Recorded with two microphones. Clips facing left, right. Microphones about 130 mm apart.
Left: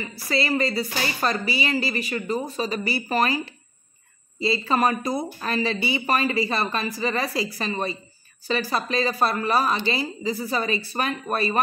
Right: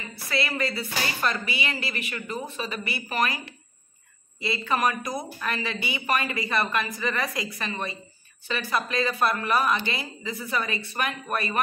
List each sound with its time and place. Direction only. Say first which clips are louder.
0.0 s speech: left 4 dB; 35° left (ahead or behind)
4.4 s speech: left 4 dB; 30° left (ahead or behind)